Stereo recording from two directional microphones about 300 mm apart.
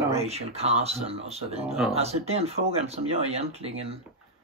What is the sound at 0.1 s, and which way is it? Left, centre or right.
Speech, right.